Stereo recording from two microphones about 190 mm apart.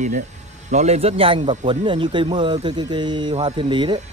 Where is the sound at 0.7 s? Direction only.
35° right (ahead or behind).